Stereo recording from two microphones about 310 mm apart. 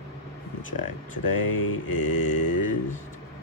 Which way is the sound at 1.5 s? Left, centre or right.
Left.